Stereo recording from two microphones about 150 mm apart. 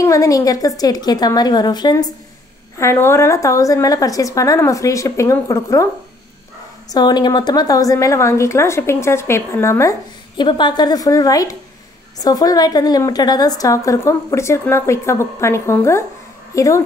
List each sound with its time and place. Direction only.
0.0 s a woman's voice: 20° left (ahead or behind)
6.9 s a woman's voice: 25° left (ahead or behind)
10.3 s a woman's voice: 30° left (ahead or behind)